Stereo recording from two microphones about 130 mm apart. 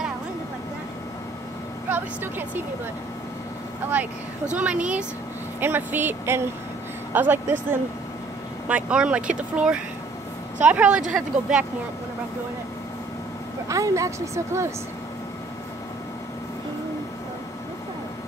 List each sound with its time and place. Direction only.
1.9 s a woman's voice: 15° right (ahead or behind)
3.9 s speech: 10° right (ahead or behind)
10.7 s speech: 10° right (ahead or behind)
13.7 s speech: 25° right (ahead or behind)